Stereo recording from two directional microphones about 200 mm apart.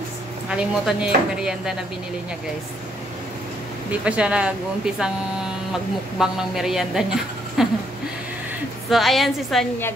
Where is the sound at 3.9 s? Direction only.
5° right (ahead or behind).